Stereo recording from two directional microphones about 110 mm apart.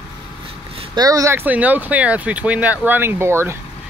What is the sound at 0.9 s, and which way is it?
Speech, 35° right (ahead or behind).